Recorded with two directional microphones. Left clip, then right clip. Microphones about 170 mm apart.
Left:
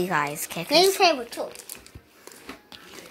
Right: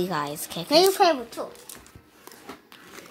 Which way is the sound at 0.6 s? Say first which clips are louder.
Even; 45° right (ahead or behind).